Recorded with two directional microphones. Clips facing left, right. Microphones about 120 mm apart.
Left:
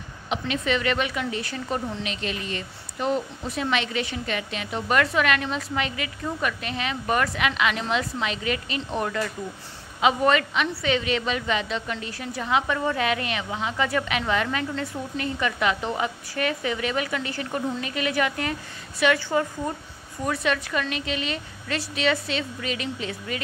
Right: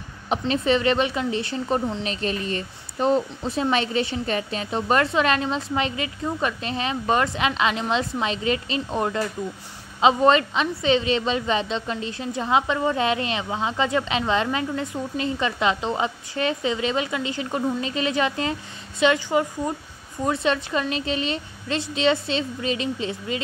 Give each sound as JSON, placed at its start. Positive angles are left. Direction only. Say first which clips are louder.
{"t": 0.5, "sound": "a woman's voice", "louder": "right 5 dB", "side_deg": -30}
{"t": 2.0, "sound": "a woman's voice", "louder": "right 4 dB", "side_deg": -35}